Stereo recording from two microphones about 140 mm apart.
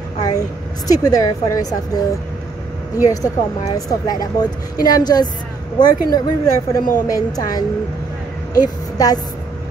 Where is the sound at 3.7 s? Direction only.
25° left (ahead or behind).